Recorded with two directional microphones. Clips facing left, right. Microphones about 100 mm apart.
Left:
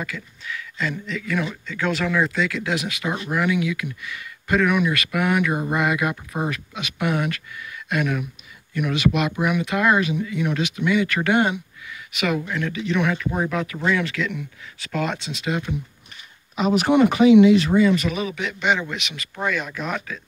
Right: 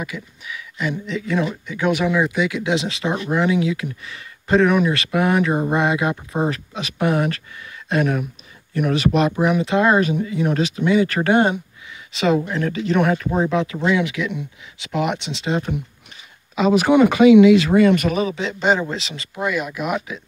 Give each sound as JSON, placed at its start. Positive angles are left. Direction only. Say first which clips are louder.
{"t": 0.0, "sound": "speech", "louder": "right 2 dB", "side_deg": -15}
{"t": 13.3, "sound": "speech", "louder": "right 5 dB", "side_deg": -20}
{"t": 17.1, "sound": "speech", "louder": "right 3 dB", "side_deg": -90}
{"t": 18.2, "sound": "speech", "louder": "right 4 dB", "side_deg": -30}
{"t": 19.3, "sound": "speech", "louder": "right 3 dB", "side_deg": -5}